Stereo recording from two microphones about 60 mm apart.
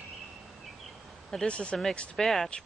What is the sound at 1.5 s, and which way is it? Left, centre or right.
Speech, centre.